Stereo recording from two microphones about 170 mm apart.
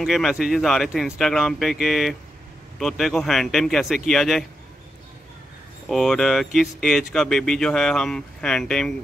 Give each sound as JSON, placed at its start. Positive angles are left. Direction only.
{"t": 0.0, "sound": "speech", "side_deg": 0}
{"t": 5.9, "sound": "speech", "side_deg": 0}